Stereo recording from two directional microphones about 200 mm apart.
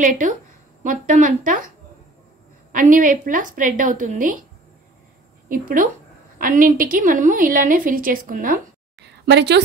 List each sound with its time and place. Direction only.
0.8 s a woman's voice: 40° right (ahead or behind)
2.7 s a woman's voice: 40° right (ahead or behind)
5.5 s a woman's voice: 45° right (ahead or behind)
9.0 s a sound: 55° right (ahead or behind)